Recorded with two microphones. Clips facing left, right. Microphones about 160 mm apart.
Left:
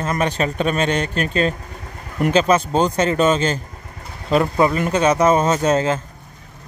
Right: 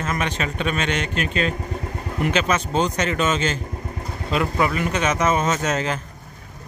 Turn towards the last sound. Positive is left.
turn(degrees=30)  # may be behind; listen again after turning